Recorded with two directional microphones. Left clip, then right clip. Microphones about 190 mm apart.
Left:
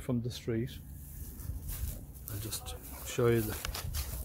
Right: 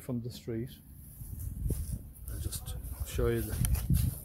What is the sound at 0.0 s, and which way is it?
Speech, 15° right (ahead or behind).